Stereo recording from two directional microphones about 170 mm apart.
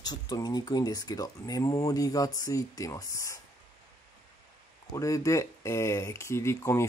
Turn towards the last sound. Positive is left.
turn(degrees=15)  # may be behind; listen again after turning